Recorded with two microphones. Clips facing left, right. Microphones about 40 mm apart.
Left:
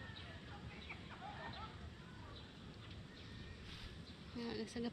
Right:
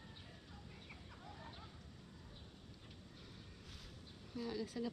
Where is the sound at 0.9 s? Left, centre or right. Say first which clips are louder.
Left 6 dB; left.